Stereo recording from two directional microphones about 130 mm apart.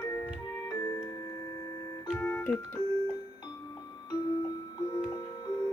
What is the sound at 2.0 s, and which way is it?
Keyboard, 10° left (ahead or behind).